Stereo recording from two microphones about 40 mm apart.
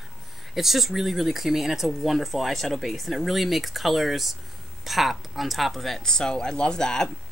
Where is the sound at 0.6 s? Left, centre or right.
Centre.